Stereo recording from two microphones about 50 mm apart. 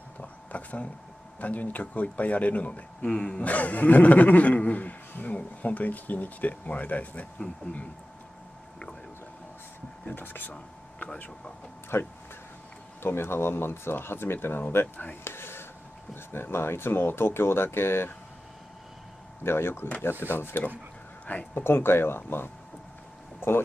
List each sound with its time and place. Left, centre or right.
0.2 s a sound: left
1.4 s speech: left
3.0 s speech: centre
10.0 s speech: left
11.9 s speech: left
15.2 s a sound: left
16.3 s speech: left
19.4 s speech: left